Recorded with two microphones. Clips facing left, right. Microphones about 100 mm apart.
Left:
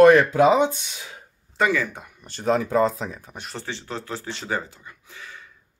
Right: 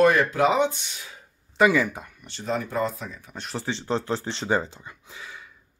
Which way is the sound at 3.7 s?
25° right (ahead or behind).